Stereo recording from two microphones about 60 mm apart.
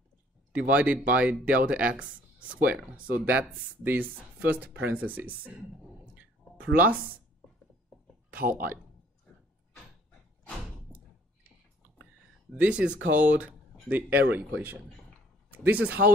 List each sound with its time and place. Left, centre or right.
0.5 s speech: right
6.1 s a sound: right
12.5 s speech: centre